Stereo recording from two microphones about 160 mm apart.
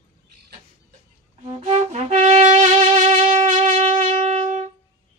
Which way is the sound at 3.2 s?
50° right (ahead or behind).